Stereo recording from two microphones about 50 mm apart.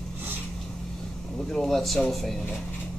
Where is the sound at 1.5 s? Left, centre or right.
Centre.